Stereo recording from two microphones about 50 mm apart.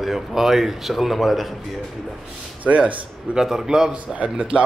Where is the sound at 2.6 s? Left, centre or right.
Right.